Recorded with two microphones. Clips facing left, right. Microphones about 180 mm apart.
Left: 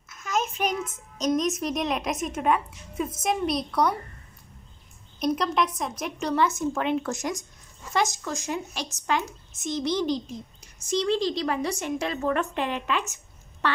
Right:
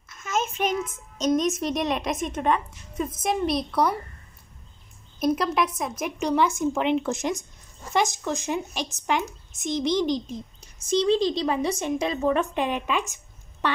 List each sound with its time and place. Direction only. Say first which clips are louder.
0.1 s a sound: even; centre (ahead or behind)
1.1 s speech: right 2 dB; centre (ahead or behind)
5.2 s a woman's voice: right 2 dB; 5° right (ahead or behind)